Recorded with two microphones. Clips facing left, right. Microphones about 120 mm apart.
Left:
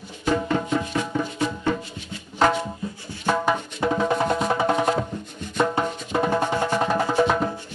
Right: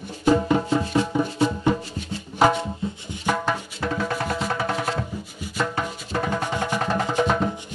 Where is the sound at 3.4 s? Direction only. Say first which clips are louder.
Left 3 dB; 20° left (ahead or behind).